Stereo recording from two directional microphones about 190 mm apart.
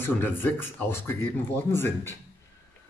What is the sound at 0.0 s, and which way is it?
Speech, 10° left (ahead or behind).